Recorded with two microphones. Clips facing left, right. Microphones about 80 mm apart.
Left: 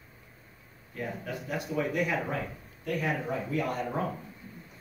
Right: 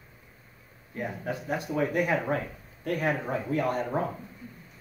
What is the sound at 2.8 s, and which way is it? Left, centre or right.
Speech, right.